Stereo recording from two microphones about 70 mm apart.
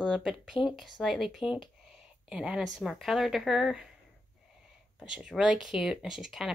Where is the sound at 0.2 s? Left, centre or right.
Centre.